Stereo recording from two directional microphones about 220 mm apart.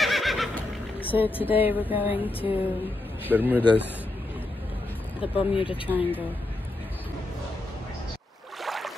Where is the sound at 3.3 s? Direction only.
5° right (ahead or behind).